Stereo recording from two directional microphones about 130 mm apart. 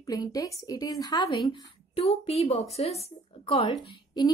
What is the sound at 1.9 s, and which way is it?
A woman's voice, 50° left (ahead or behind).